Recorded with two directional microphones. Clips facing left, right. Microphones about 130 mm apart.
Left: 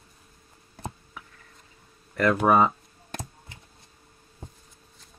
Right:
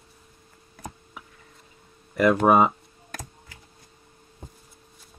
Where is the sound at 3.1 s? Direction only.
25° left (ahead or behind).